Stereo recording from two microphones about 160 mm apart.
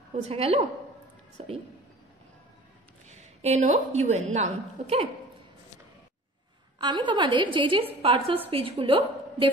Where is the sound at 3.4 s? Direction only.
45° right (ahead or behind).